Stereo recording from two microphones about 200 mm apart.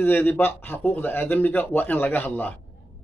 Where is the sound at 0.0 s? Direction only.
10° left (ahead or behind).